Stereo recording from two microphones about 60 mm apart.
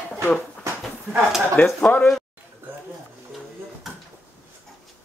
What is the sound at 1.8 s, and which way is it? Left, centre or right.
Speech, left.